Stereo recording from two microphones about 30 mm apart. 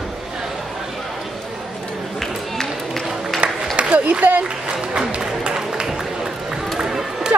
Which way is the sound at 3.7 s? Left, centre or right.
Right.